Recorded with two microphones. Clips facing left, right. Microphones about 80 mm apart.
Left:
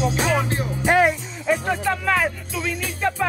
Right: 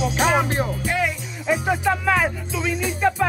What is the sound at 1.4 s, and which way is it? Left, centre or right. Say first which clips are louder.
Speech: right 1 dB; centre.